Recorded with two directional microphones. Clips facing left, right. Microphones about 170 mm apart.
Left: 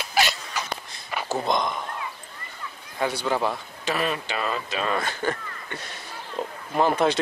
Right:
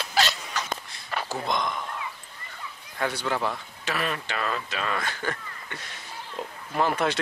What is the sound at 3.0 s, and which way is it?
Speech, 15° left (ahead or behind).